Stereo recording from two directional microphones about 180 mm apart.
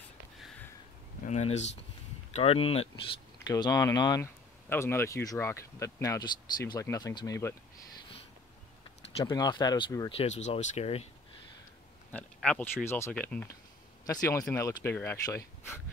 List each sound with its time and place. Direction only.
1.2 s speech: 40° left (ahead or behind)
3.4 s speech: 20° left (ahead or behind)
9.2 s speech: 20° left (ahead or behind)
12.1 s speech: 5° left (ahead or behind)